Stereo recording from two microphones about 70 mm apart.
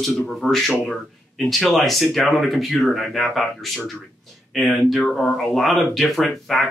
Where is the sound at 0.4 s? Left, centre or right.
Centre.